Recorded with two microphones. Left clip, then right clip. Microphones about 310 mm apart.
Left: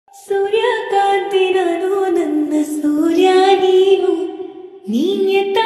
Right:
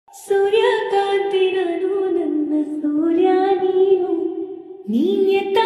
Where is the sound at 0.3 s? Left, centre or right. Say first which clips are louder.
Even; centre; by 1.7 s left.